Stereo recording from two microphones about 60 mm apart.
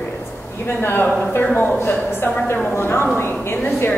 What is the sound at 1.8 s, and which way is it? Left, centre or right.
A woman's voice, left.